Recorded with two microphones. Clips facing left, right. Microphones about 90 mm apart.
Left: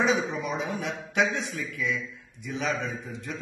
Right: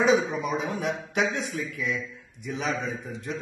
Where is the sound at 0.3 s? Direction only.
40° right (ahead or behind).